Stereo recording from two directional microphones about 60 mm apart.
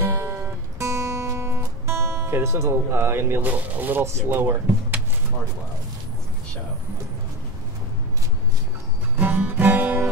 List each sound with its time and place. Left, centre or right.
0.0 s music: right
1.3 s music: right
3.4 s speech: right
9.1 s music: right